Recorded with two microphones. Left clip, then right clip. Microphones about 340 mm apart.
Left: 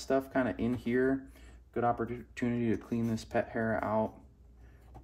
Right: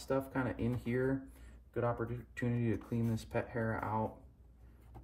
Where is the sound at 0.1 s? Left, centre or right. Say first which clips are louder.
Left 6 dB; left.